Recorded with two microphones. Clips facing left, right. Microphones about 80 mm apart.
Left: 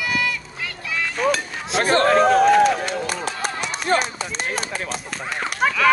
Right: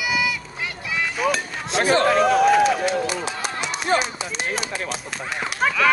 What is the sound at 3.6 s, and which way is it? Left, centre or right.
Run, left.